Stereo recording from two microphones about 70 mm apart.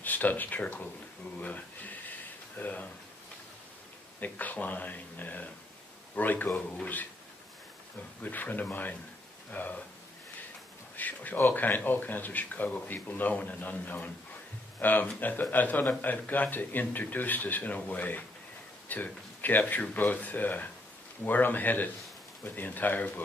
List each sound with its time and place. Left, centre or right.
0.0 s speech: left
1.4 s a sound: left
4.2 s speech: left
8.2 s speech: left
11.0 s speech: left